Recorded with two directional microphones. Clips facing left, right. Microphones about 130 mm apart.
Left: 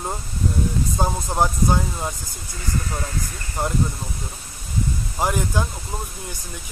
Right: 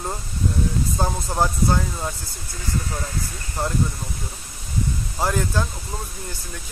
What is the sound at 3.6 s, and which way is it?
Speech, 15° left (ahead or behind).